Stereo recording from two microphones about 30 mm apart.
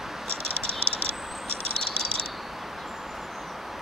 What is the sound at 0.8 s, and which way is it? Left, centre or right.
Cricket, left.